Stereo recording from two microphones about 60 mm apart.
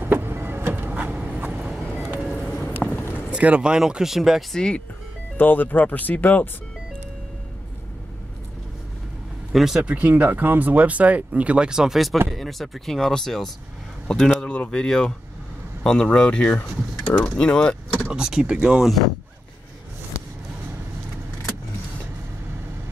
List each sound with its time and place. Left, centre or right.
0.0 s vehicle: right
0.8 s a sound: right
2.0 s music: right
2.3 s a sound: centre
2.9 s a sound: left
3.3 s speech: right; by 4.6 s centre
4.6 s speech: centre
5.4 s speech: left
9.5 s speech: centre
9.8 s speech: right; by 18.0 s centre
18.0 s speech: centre